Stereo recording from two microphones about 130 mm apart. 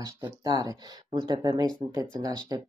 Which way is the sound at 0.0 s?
30° right (ahead or behind).